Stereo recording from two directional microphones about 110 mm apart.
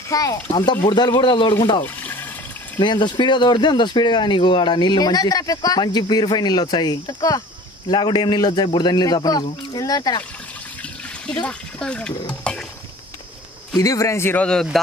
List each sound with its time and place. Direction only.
0.1 s a man's voice: 35° left (ahead or behind)
2.8 s a man's voice: 45° left (ahead or behind)
11.4 s speech: 10° left (ahead or behind)
12.5 s a sound: 10° left (ahead or behind)
13.7 s speech: 30° left (ahead or behind)
14.4 s speech: 5° left (ahead or behind)